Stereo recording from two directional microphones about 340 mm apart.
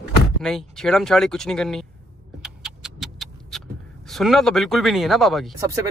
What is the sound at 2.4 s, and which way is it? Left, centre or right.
Vehicle, centre.